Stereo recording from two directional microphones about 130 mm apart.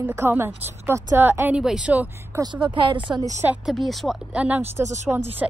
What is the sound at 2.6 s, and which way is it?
Speech, 40° right (ahead or behind).